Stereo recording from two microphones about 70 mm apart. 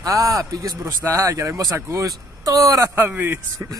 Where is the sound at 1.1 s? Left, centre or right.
Right.